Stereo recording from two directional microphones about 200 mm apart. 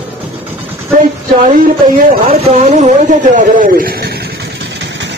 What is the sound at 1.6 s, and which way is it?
Speech, 45° right (ahead or behind).